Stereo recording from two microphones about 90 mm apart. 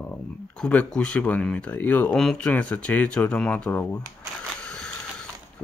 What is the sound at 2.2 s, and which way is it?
Speech, 10° left (ahead or behind).